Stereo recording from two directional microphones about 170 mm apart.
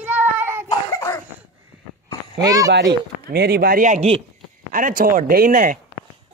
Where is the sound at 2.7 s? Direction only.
75° right (ahead or behind); by 4.2 s 40° right (ahead or behind).